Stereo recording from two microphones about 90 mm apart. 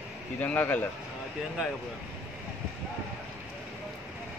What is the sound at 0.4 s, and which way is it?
Speech, 20° left (ahead or behind).